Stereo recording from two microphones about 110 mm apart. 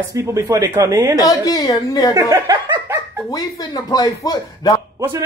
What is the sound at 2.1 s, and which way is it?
Speech, 35° right (ahead or behind).